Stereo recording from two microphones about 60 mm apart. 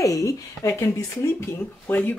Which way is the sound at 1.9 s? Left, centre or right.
Left.